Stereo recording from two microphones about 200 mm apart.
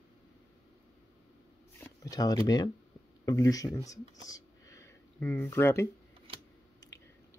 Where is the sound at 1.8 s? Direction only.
15° left (ahead or behind).